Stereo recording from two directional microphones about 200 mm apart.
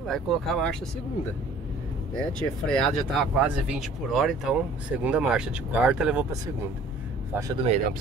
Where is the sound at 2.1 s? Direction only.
5° left (ahead or behind).